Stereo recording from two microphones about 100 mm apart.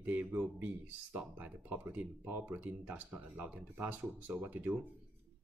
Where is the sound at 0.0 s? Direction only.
20° right (ahead or behind).